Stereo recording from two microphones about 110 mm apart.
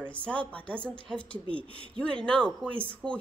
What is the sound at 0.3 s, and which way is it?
Speech, 10° left (ahead or behind).